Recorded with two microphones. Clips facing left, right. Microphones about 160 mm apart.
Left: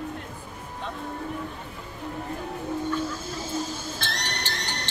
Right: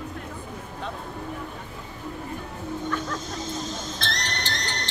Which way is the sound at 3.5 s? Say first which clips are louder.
Left 1 dB; 10° left (ahead or behind).